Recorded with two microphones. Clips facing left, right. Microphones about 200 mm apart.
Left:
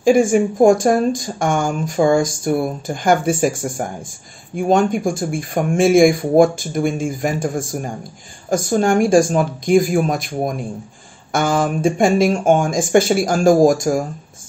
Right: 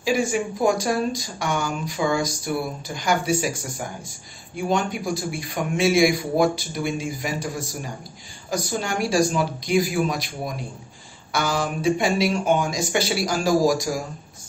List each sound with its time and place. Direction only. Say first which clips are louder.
0.0 s speech: left 9 dB; 50° left (ahead or behind)